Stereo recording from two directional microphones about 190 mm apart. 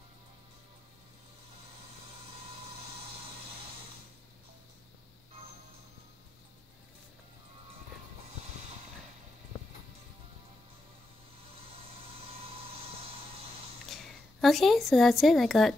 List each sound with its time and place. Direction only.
12.4 s vehicle: 30° right (ahead or behind)
13.8 s a woman's voice: centre (ahead or behind)